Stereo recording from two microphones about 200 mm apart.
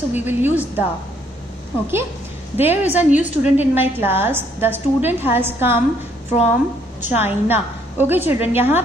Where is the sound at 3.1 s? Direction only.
40° left (ahead or behind).